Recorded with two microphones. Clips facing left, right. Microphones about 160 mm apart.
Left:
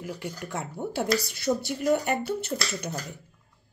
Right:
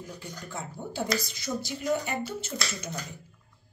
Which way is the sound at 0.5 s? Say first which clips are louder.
Left 4 dB; 75° left (ahead or behind).